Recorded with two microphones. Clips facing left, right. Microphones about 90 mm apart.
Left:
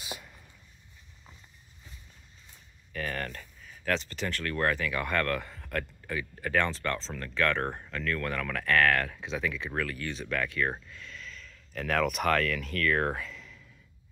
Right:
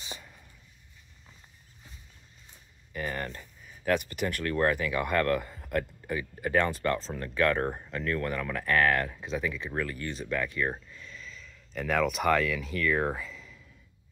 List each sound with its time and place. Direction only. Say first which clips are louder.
0.0 s a sound: left 2 dB; 5° left (ahead or behind)
2.9 s speech: right 1 dB; 15° right (ahead or behind)
9.2 s speech: right 1 dB; 5° right (ahead or behind)